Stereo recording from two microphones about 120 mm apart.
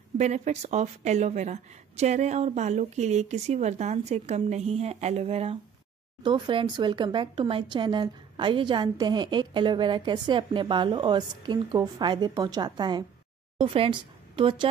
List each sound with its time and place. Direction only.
0.2 s a woman's voice: 70° right (ahead or behind)
6.2 s speech: 40° right (ahead or behind)